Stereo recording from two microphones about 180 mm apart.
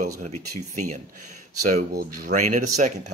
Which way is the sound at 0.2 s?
40° right (ahead or behind).